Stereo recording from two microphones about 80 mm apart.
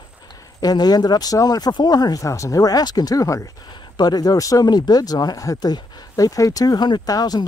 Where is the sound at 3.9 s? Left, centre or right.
Left.